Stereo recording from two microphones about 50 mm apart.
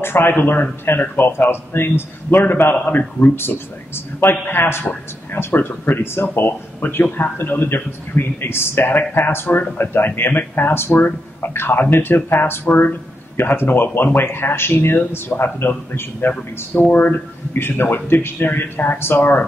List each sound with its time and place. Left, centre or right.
0.0 s speech: left
3.3 s speech: left
17.6 s speech: left